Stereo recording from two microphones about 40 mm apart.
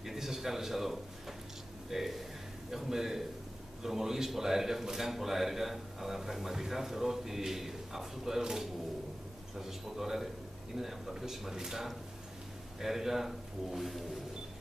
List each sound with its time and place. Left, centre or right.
0.0 s a man's voice: centre